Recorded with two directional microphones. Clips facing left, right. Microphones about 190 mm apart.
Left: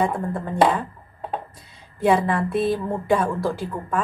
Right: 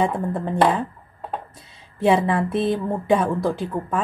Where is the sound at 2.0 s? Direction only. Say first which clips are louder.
Right 1 dB; 25° right (ahead or behind).